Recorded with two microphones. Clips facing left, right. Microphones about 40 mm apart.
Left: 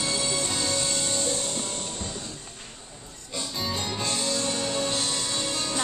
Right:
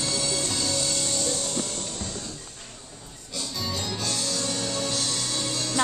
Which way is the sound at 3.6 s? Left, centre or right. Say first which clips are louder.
Left 1 dB; left.